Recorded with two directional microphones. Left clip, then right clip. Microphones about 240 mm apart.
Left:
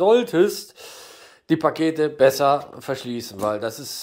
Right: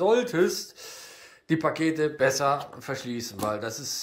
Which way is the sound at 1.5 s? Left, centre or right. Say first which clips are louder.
Left 5 dB; centre.